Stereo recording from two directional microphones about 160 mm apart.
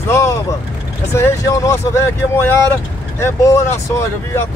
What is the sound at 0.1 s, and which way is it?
Vehicle, 15° left (ahead or behind).